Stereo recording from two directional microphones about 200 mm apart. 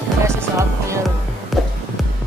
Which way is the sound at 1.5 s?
Centre (ahead or behind).